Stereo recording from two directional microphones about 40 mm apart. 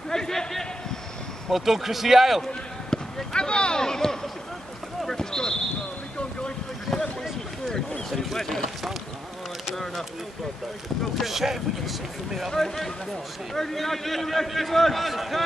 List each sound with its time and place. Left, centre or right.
0.1 s a sound: centre
1.5 s a man's voice: centre
3.3 s a sound: left
5.0 s basketball bounce: centre
8.1 s boat: centre
11.1 s a man's voice: centre
12.4 s a man's voice: centre